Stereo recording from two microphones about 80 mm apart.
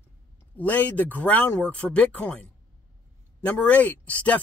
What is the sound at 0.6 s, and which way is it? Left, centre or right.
Speech, left.